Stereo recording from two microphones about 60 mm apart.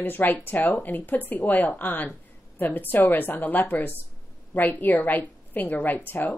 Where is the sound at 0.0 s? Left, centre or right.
Left.